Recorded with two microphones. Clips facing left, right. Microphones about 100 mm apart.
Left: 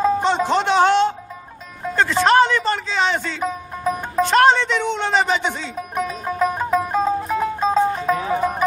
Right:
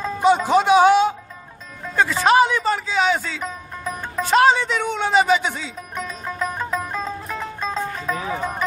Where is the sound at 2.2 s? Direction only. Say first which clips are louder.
Even; 10° right (ahead or behind).